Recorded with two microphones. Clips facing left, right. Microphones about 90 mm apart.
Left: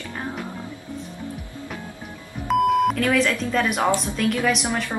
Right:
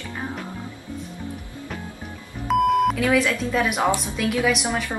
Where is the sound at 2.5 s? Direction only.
Centre (ahead or behind).